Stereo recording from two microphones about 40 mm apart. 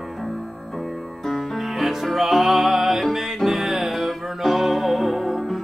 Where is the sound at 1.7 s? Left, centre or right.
Centre.